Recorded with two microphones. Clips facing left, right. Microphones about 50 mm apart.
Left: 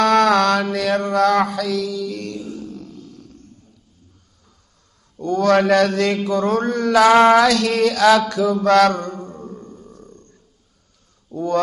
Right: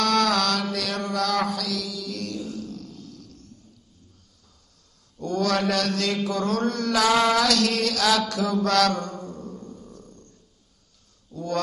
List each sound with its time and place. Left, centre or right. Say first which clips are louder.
0.0 s mantra: left 7 dB; left
1.1 s a sound: left 8 dB; left
1.4 s mantra: left 7 dB; left
2.6 s a sound: left 3 dB; left
5.4 s mantra: left 9 dB; left
6.1 s mantra: left 6 dB; centre
8.4 s mantra: left 6 dB; centre
8.6 s mantra: left 8 dB; left
9.0 s music: left 4 dB; left
10.0 s a sound: left 5 dB; left
11.2 s speech: left 7 dB; left